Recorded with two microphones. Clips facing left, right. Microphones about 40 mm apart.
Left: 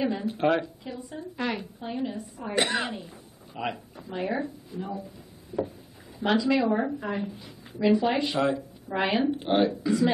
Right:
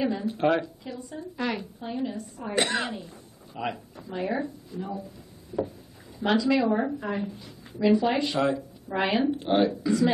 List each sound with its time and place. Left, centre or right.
0.1 s a woman's voice: centre
4.7 s a woman's voice: centre